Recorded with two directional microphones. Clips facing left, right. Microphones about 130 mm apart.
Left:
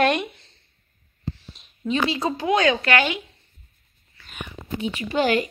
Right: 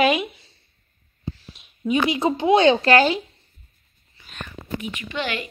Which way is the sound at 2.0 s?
20° right (ahead or behind).